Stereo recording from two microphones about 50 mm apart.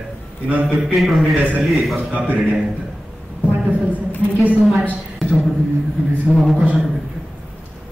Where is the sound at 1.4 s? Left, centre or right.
Right.